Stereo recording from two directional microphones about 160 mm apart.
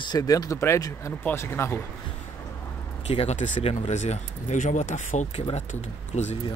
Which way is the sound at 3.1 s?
40° left (ahead or behind).